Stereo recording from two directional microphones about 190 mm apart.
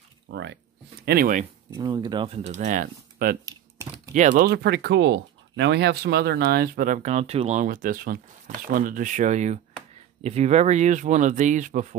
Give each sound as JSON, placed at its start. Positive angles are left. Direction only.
{"t": 0.3, "sound": "speech", "side_deg": -70}
{"t": 1.0, "sound": "speech", "side_deg": -50}
{"t": 1.7, "sound": "speech", "side_deg": -20}
{"t": 3.4, "sound": "typing", "side_deg": -20}
{"t": 4.1, "sound": "speech", "side_deg": -40}